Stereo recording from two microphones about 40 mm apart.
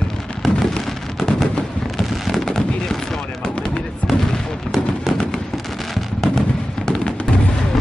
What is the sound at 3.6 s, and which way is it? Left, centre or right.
Fireworks, left.